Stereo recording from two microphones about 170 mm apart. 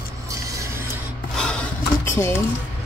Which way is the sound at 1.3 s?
5° left (ahead or behind).